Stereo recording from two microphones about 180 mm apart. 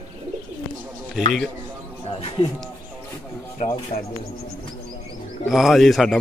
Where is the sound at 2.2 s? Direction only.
35° left (ahead or behind).